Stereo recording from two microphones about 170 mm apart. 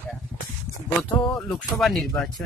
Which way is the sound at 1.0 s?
Centre (ahead or behind).